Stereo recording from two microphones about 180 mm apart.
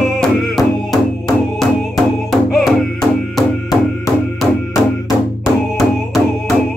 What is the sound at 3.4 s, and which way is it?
Music, 20° left (ahead or behind).